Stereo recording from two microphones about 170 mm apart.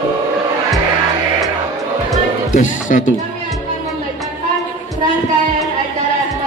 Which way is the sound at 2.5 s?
50° left (ahead or behind).